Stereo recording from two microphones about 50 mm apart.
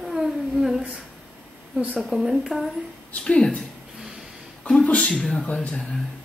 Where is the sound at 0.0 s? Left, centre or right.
Centre.